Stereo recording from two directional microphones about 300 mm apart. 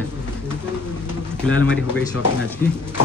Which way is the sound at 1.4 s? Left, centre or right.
Centre.